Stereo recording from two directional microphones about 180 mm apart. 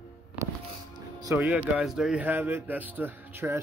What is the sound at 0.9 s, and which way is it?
Music, 20° right (ahead or behind).